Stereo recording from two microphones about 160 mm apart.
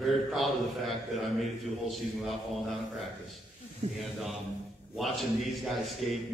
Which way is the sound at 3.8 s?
45° right (ahead or behind).